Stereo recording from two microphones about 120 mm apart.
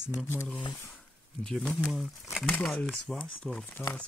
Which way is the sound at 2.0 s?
5° right (ahead or behind).